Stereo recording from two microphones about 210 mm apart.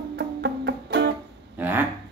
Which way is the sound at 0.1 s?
55° right (ahead or behind).